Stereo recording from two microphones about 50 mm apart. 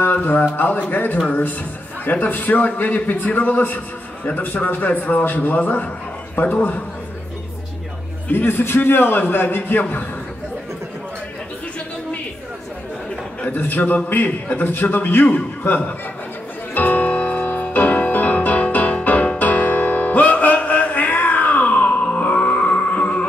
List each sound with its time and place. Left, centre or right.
0.0 s a man's voice: left
8.3 s a man's voice: left
13.5 s a man's voice: left
16.7 s music: left
22.0 s music: left